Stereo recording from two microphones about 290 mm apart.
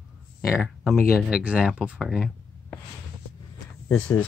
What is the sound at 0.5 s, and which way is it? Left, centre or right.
Speech, centre.